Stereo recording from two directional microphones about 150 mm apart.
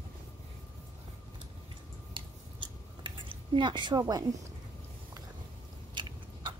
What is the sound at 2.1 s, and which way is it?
Chewing, 35° right (ahead or behind).